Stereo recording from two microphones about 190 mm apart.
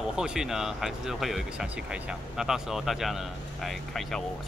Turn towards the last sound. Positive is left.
turn(degrees=0)  # may be behind; listen again after turning